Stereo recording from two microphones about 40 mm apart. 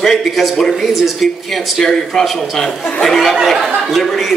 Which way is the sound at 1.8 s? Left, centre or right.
Centre.